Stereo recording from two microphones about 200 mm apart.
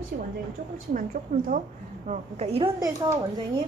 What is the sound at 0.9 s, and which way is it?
Speech, 45° right (ahead or behind).